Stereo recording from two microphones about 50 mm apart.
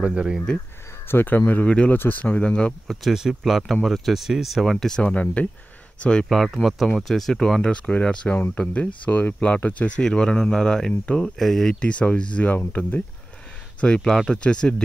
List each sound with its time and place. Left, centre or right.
0.0 s speech: centre
1.0 s speech: left
1.5 s speech: left
2.9 s speech: centre
5.0 s speech: left
6.2 s speech: centre
7.7 s speech: left
11.3 s speech: centre
11.8 s speech: left
13.7 s speech: centre